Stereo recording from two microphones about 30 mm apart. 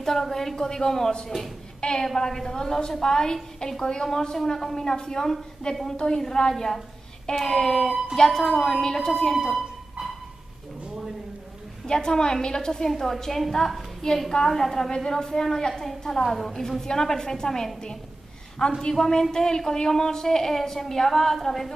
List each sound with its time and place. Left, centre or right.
0.0 s a woman's voice: centre
1.8 s a woman's voice: left
2.1 s a woman's voice: centre
4.6 s a woman's voice: centre
4.8 s a woman's voice: left
9.5 s a sound: centre
11.9 s a woman's voice: left
13.0 s a woman's voice: centre
14.0 s a woman's voice: left
14.5 s a woman's voice: centre
18.8 s a woman's voice: left